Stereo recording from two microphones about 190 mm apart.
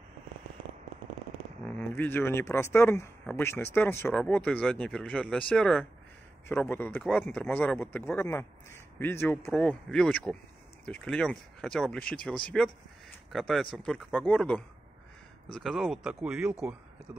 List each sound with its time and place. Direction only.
1.7 s speech: 10° left (ahead or behind)
7.1 s speech: centre (ahead or behind)